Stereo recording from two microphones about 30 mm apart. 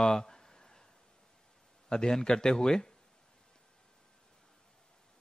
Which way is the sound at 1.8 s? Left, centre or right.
Left.